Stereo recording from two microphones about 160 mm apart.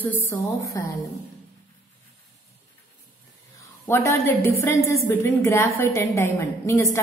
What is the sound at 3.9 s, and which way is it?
A woman's voice, 15° left (ahead or behind).